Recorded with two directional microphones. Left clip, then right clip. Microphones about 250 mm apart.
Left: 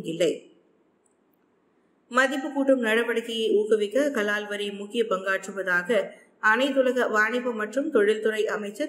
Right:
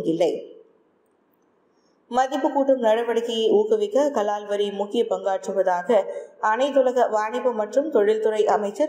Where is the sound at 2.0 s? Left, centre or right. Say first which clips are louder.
Right 2 dB; centre.